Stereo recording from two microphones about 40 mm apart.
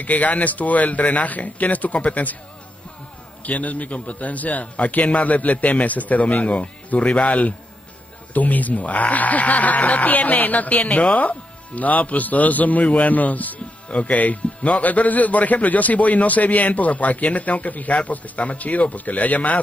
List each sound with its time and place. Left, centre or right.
0.0 s a man's voice: left
3.4 s a man's voice: left
8.3 s a man's voice: left